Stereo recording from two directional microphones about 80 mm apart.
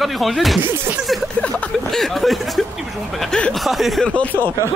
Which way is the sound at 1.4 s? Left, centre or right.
Centre.